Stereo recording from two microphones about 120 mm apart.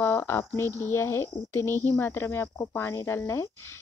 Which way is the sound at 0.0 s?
20° left (ahead or behind).